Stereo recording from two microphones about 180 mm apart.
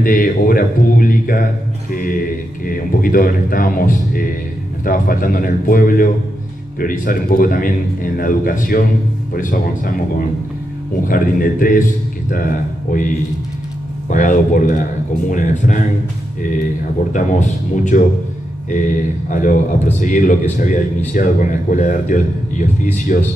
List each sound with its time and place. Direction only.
0.0 s speech: 50° left (ahead or behind)
11.1 s a man's voice: 50° left (ahead or behind)
14.1 s speech: 45° left (ahead or behind)
17.1 s speech: 45° left (ahead or behind)